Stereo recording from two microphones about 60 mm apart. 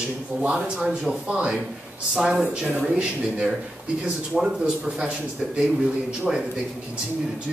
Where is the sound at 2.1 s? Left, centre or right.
Centre.